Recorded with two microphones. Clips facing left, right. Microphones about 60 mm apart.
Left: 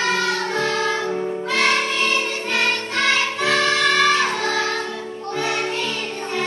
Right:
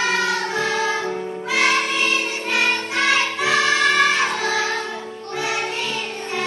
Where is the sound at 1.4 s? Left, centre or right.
Centre.